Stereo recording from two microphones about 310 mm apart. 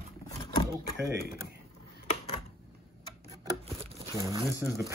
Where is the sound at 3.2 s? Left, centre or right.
Centre.